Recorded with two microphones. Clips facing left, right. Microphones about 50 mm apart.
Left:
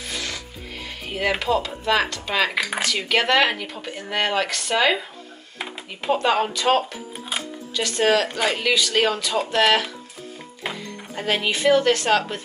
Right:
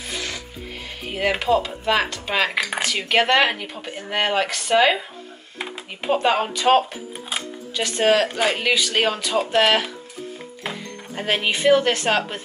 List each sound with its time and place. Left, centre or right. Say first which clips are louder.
0.1 s rub: right 1 dB; centre
1.4 s speech: right 2 dB; centre
6.0 s speech: even; centre
6.8 s music: right 2 dB; centre
7.7 s speech: right 1 dB; right
11.1 s speech: right 1 dB; centre